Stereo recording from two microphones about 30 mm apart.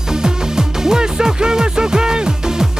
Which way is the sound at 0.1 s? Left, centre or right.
Right.